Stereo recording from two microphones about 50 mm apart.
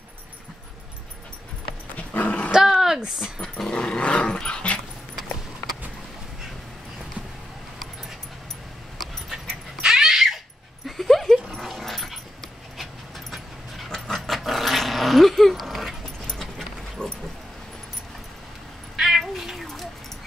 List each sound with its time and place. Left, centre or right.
2.0 s dog: left
2.5 s a sound: centre
3.7 s dog: left
8.9 s dog: centre
9.8 s dog: centre
10.9 s dog: centre
13.8 s dog: centre
17.0 s dog: centre
18.9 s cat: centre